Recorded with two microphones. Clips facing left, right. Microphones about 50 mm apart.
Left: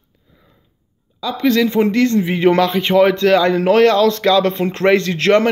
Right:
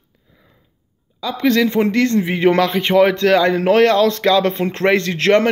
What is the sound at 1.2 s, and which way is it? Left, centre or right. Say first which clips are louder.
A man's voice: even; right.